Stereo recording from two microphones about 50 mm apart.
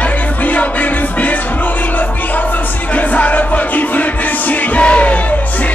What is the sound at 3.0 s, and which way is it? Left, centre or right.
Music, left.